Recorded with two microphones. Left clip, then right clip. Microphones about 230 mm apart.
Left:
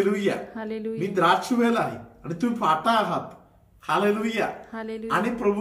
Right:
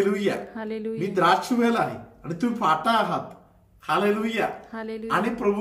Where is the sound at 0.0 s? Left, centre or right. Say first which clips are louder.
Even; centre.